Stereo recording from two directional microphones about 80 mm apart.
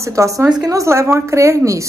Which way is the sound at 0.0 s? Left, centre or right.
Right.